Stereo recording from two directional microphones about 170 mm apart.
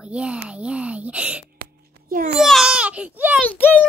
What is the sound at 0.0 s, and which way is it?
A woman's voice, 5° right (ahead or behind).